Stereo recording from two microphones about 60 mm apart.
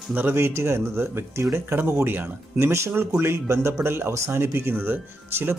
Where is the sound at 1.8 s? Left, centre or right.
Right.